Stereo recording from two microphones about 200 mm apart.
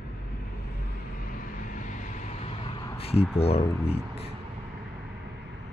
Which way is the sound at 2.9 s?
30° left (ahead or behind).